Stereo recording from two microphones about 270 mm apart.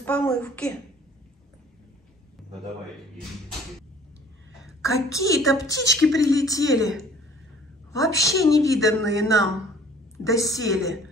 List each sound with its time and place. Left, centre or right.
0.0 s speech: centre
4.8 s a woman's voice: centre
7.9 s a woman's voice: centre